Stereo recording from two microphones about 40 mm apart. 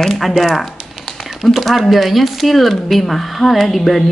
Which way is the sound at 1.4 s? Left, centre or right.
Centre.